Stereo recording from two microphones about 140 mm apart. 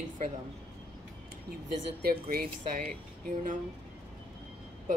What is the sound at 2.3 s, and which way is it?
Speech, 90° right.